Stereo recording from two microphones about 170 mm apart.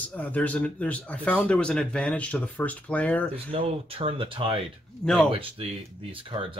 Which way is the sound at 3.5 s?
35° right (ahead or behind).